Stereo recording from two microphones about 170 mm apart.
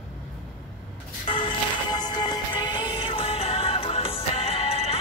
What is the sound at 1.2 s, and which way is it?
Music, 30° left (ahead or behind).